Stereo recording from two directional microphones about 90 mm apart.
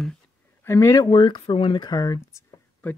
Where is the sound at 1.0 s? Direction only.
55° left (ahead or behind); by 2.4 s 40° left (ahead or behind).